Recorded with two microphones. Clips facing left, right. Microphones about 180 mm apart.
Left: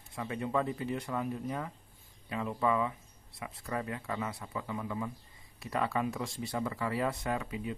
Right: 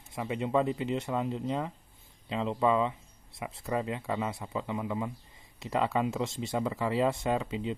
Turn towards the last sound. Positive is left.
turn(degrees=-25)  # may be behind; listen again after turning